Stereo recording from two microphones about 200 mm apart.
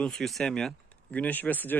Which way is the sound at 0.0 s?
5° left (ahead or behind).